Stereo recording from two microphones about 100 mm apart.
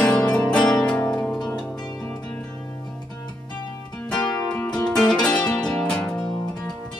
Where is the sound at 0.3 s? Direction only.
10° left (ahead or behind).